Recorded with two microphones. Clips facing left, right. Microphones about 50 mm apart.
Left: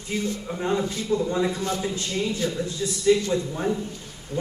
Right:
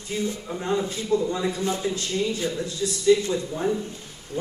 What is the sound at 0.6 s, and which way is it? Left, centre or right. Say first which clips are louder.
Speech: even; centre.